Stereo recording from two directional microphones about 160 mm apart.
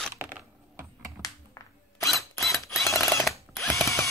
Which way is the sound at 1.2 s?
20° left (ahead or behind).